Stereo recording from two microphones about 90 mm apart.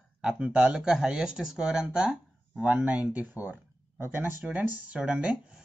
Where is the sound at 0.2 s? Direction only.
10° right (ahead or behind).